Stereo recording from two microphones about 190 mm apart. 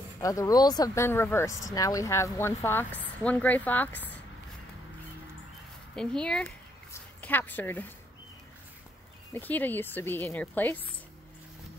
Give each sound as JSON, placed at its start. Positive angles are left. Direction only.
{"t": 0.2, "sound": "speech", "side_deg": 20}
{"t": 5.9, "sound": "speech", "side_deg": 5}
{"t": 9.3, "sound": "speech", "side_deg": 10}